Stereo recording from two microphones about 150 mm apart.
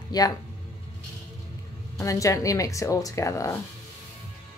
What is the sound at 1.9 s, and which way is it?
Speech, 20° left (ahead or behind).